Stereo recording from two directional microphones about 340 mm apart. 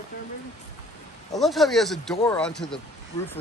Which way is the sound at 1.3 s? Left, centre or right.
Centre.